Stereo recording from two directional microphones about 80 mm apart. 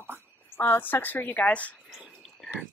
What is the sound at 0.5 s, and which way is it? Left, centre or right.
Speech, left.